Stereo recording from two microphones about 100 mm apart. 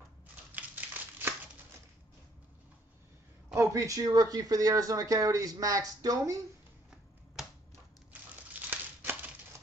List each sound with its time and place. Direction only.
0.5 s crumpling: 15° right (ahead or behind)
3.5 s speech: 35° right (ahead or behind)
7.4 s a sound: centre (ahead or behind)
8.1 s crumpling: 20° right (ahead or behind)